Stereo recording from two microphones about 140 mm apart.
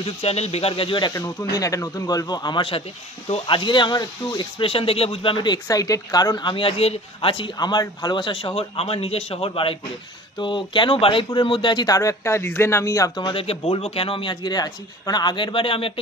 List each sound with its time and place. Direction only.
0.0 s speech: 45° left (ahead or behind)
1.1 s speech: 25° left (ahead or behind)
13.2 s speech: 40° left (ahead or behind)